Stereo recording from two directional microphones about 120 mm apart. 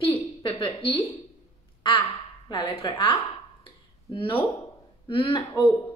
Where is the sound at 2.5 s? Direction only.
45° left (ahead or behind).